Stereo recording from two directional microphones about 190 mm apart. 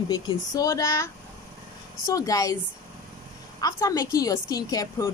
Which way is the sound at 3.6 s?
20° left (ahead or behind).